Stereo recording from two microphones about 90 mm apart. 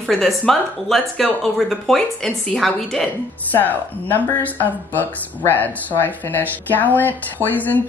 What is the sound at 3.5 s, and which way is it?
Speech, 20° left (ahead or behind).